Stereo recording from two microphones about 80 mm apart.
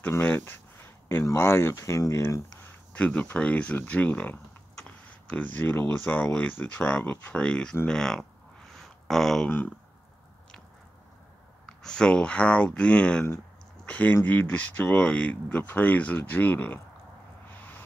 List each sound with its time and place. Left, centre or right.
0.2 s speech: left
3.0 s speech: centre
8.7 s a sound: centre
11.8 s speech: centre